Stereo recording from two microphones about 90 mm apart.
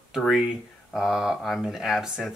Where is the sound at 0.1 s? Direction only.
5° right (ahead or behind).